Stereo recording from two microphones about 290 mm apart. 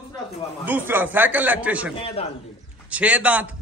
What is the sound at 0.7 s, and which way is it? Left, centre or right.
A man's voice, centre.